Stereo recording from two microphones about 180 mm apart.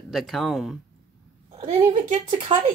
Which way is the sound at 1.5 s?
30° right (ahead or behind).